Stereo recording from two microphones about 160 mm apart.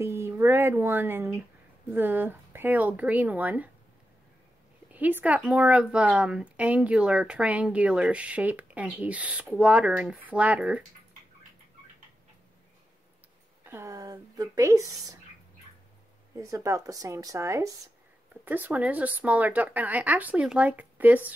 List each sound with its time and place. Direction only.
0.0 s a woman's voice: 15° right (ahead or behind)
4.9 s a woman's voice: 10° right (ahead or behind)
13.7 s a woman's voice: 20° right (ahead or behind)
16.3 s a woman's voice: 20° right (ahead or behind)